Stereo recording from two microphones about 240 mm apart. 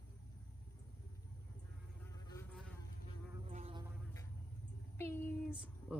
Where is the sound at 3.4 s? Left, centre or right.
Right.